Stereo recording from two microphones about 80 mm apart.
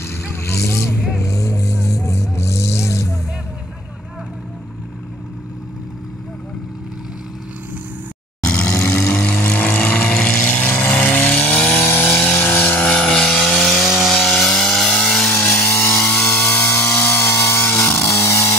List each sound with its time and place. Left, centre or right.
0.0 s vehicle: left
8.9 s vehicle: centre
11.9 s vehicle: left; by 14.1 s centre
14.1 s chainsaw: centre
15.3 s vehicle: left
16.3 s vehicle: left